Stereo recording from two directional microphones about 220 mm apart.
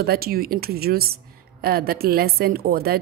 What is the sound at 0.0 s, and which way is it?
Speech, 45° right (ahead or behind).